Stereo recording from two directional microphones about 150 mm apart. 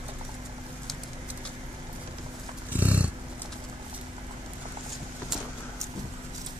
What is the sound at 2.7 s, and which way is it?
Roaring cats, 10° right (ahead or behind).